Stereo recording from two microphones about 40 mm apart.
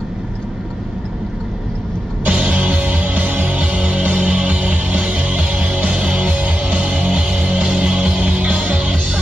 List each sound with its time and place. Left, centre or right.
2.2 s music: right
8.5 s music: right